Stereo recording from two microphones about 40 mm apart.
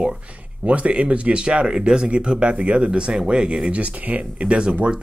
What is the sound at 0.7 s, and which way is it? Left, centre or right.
Speech, right.